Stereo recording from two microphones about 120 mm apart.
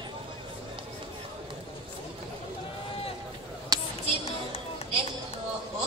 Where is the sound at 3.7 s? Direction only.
30° right (ahead or behind).